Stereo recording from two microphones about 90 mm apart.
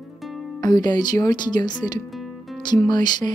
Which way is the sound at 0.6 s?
50° left (ahead or behind).